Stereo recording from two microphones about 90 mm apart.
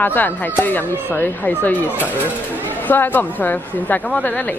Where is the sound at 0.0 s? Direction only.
20° left (ahead or behind).